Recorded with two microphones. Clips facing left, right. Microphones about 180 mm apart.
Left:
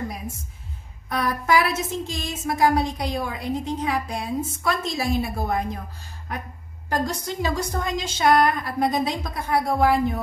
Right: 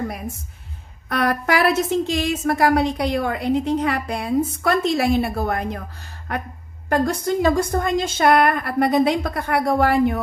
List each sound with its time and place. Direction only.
1.0 s a woman's voice: 70° right (ahead or behind)
6.9 s a woman's voice: 55° right (ahead or behind); by 10.2 s 70° right (ahead or behind)